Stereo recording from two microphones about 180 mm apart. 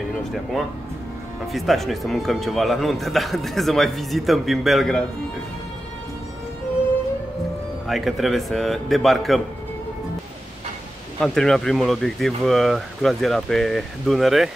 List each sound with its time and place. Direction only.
1.5 s speech: centre (ahead or behind)
7.8 s speech: centre (ahead or behind)
11.1 s speech: 5° left (ahead or behind)